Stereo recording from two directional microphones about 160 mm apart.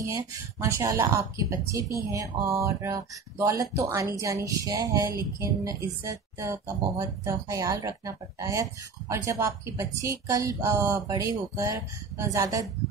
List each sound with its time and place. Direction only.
0.0 s speech: 20° right (ahead or behind)